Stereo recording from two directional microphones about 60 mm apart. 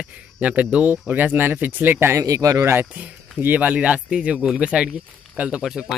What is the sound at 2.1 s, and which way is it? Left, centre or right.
Speech, right.